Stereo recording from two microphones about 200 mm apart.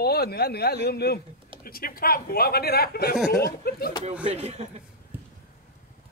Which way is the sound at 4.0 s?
30° right (ahead or behind).